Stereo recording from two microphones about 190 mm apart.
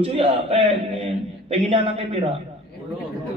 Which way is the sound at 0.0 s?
30° right (ahead or behind).